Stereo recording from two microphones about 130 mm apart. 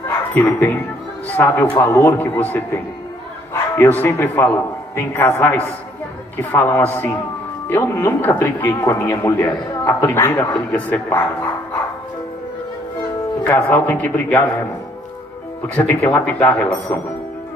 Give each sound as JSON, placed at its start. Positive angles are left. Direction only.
{"t": 0.3, "sound": "a man's voice", "side_deg": 15}
{"t": 13.4, "sound": "a man's voice", "side_deg": 15}
{"t": 15.6, "sound": "a man's voice", "side_deg": 15}